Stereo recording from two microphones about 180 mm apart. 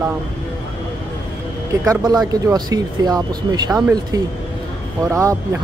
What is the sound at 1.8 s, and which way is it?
Speech, 20° right (ahead or behind).